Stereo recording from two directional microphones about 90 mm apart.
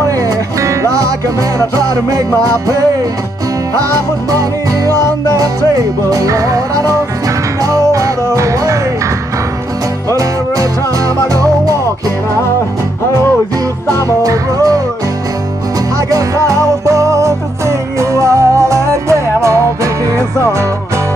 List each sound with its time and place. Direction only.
0.6 s music: 40° right (ahead or behind)
4.3 s music: 40° right (ahead or behind)
14.2 s music: 40° right (ahead or behind)
16.1 s music: 40° right (ahead or behind)